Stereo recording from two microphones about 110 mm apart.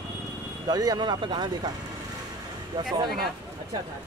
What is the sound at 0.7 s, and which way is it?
Speech, 35° right (ahead or behind).